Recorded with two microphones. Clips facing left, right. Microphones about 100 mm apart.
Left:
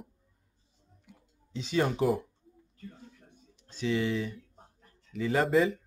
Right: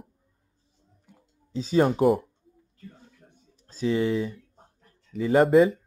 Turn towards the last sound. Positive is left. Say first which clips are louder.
# right 7 dB
turn(degrees=-35)  # may be behind; listen again after turning